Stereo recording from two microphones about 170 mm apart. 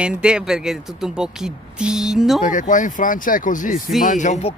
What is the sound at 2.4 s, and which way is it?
Speech, 50° left (ahead or behind).